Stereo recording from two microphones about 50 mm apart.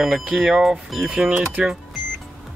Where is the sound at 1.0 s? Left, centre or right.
Right.